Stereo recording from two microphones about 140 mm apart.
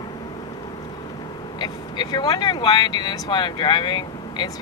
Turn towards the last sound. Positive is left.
turn(degrees=35)  # may be behind; listen again after turning